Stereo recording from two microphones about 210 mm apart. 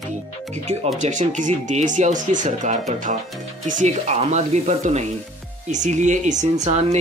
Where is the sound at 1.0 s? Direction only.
35° right (ahead or behind).